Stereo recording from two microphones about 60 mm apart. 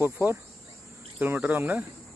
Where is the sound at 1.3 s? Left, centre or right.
Right.